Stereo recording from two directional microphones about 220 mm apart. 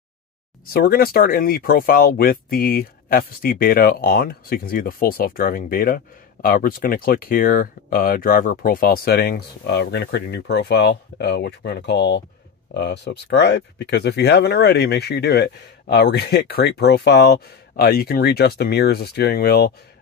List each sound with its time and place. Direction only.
0.7 s speech: 45° left (ahead or behind)